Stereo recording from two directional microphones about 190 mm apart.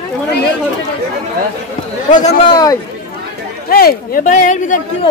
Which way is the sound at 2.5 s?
20° left (ahead or behind).